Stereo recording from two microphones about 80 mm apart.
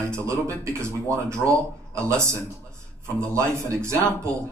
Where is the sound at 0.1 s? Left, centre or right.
Right.